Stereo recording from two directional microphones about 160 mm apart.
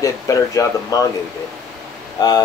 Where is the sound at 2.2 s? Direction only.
25° left (ahead or behind).